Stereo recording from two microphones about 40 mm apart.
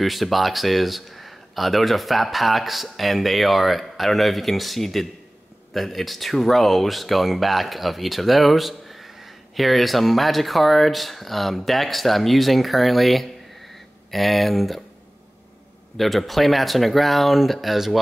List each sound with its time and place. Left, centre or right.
0.0 s speech: centre
16.0 s speech: centre